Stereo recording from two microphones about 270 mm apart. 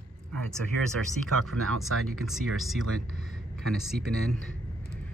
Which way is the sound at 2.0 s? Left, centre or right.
Centre.